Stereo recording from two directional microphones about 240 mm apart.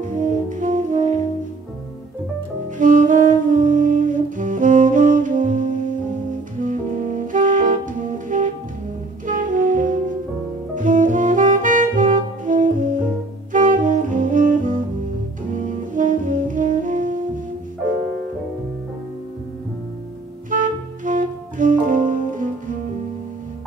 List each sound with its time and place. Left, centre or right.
0.0 s brass instrument: right
2.8 s saxophone: right
15.9 s saxophone: right
20.4 s music: right